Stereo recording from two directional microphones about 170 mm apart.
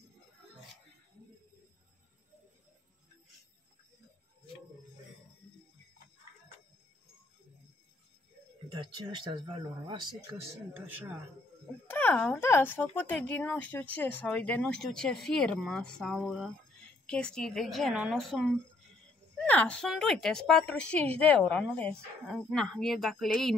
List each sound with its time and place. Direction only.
8.6 s speech: 30° right (ahead or behind); by 11.1 s 10° right (ahead or behind)
11.9 s a woman's voice: 10° left (ahead or behind)